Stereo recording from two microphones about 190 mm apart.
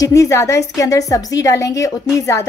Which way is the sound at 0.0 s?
15° left (ahead or behind).